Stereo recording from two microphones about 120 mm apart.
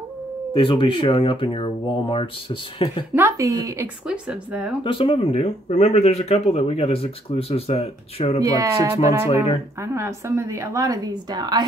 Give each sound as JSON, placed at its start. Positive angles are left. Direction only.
{"t": 0.6, "sound": "speech", "side_deg": 45}
{"t": 3.2, "sound": "a woman's voice", "side_deg": -20}
{"t": 4.1, "sound": "speech", "side_deg": -10}
{"t": 4.8, "sound": "speech", "side_deg": 45}
{"t": 8.5, "sound": "a woman's voice", "side_deg": -30}